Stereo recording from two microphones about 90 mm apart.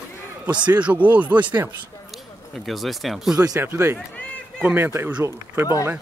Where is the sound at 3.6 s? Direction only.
30° right (ahead or behind).